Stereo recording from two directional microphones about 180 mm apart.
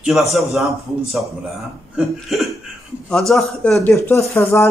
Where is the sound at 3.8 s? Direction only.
10° left (ahead or behind).